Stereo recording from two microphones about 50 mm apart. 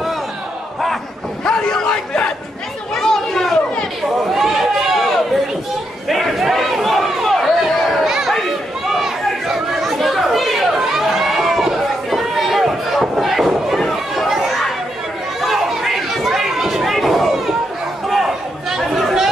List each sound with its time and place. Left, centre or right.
1.4 s a sound: centre
2.9 s chatter: centre
4.2 s run: centre
6.0 s crowd: centre
7.2 s chatter: centre